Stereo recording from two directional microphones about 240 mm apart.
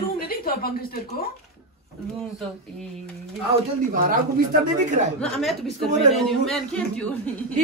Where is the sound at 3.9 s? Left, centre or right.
Right.